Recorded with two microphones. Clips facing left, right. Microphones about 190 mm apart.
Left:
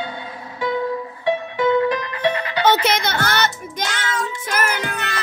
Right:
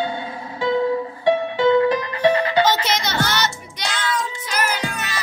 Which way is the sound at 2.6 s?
60° left (ahead or behind).